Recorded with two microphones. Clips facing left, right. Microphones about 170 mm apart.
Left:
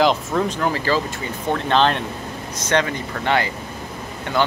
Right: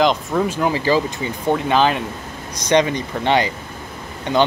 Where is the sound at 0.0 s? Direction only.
Centre (ahead or behind).